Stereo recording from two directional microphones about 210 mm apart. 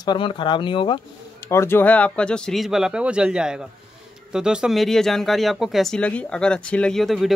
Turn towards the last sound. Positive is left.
turn(degrees=0)  # may be behind; listen again after turning